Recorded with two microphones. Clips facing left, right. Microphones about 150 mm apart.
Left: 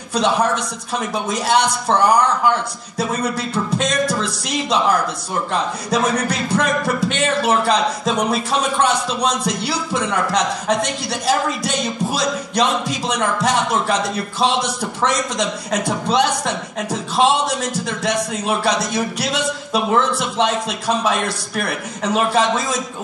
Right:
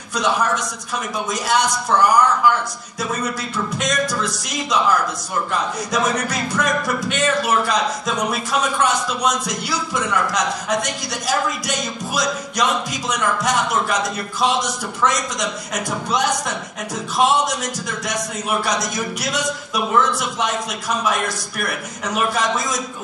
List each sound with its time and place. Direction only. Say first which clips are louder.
0.1 s a man's voice: left 3 dB; 30° left (ahead or behind)
3.5 s a man's voice: left 2 dB; 30° left (ahead or behind)